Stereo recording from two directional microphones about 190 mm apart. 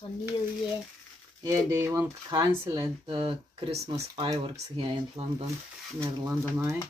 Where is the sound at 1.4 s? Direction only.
15° right (ahead or behind); by 5.3 s 35° right (ahead or behind).